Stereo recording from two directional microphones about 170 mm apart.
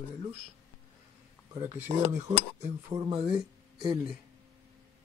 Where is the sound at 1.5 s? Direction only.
15° right (ahead or behind).